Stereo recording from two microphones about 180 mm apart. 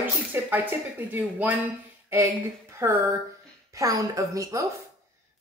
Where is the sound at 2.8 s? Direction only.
15° right (ahead or behind).